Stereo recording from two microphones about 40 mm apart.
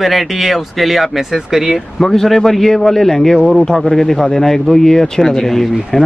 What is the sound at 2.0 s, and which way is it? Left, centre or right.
Speech, centre.